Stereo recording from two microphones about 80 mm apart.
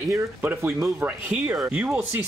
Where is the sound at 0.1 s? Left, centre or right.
Right.